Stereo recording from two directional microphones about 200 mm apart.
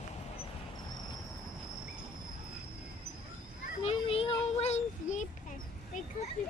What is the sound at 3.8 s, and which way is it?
Child singing, 30° left (ahead or behind).